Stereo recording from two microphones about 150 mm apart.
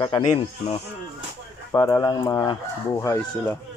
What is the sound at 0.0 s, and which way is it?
Chicken, 25° left (ahead or behind).